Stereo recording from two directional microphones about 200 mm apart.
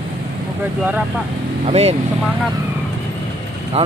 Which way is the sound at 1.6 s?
30° right (ahead or behind).